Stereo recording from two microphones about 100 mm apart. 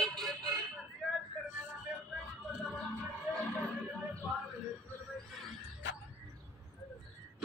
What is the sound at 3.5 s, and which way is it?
Music, 10° left (ahead or behind).